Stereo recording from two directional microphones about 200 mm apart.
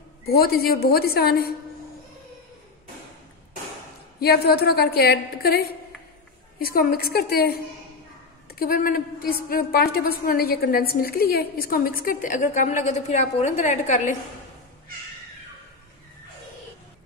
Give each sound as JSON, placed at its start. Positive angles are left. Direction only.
{"t": 0.3, "sound": "a woman's voice", "side_deg": 50}
{"t": 4.2, "sound": "a woman's voice", "side_deg": 50}